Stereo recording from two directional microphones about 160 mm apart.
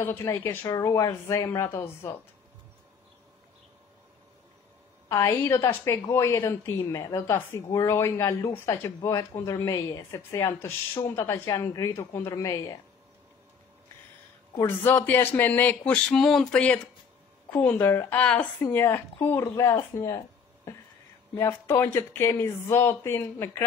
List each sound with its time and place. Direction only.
0.0 s speech: 15° left (ahead or behind)
5.1 s a woman's voice: 20° left (ahead or behind)
14.6 s a woman's voice: 15° left (ahead or behind)
21.4 s a woman's voice: 15° left (ahead or behind)